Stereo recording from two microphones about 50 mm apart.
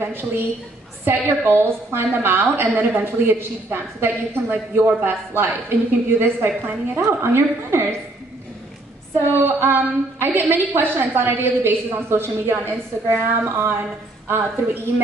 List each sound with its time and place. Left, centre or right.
0.0 s a woman's voice: right
9.3 s a woman's voice: right